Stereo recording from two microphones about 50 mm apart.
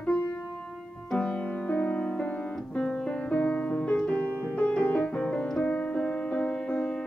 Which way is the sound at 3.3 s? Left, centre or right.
Left.